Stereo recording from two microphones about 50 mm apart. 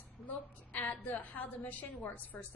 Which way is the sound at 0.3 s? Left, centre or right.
Left.